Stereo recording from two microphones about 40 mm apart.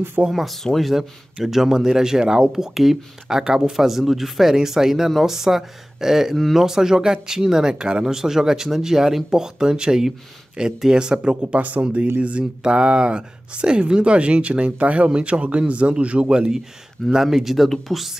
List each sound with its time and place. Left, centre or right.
0.3 s speech: centre; by 11.3 s right
11.5 s speech: right
12.2 s speech: right
17.1 s speech: centre